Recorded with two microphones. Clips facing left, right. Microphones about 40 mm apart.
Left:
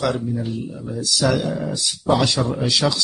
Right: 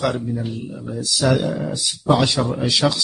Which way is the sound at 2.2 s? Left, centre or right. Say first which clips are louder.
Right 1 dB; right.